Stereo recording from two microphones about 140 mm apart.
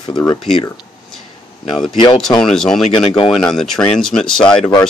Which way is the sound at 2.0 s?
35° left (ahead or behind).